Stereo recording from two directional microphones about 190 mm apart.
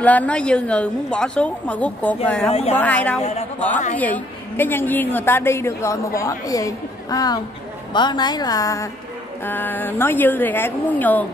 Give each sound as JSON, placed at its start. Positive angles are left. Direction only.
{"t": 0.0, "sound": "a woman's voice", "side_deg": 10}
{"t": 2.5, "sound": "a woman's voice", "side_deg": 30}
{"t": 2.8, "sound": "a woman's voice", "side_deg": 10}